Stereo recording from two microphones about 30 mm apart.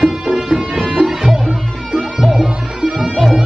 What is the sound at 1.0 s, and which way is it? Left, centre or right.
Music, centre.